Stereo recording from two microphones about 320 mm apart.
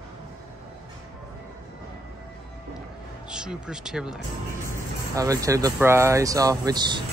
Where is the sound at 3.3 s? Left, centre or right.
Centre.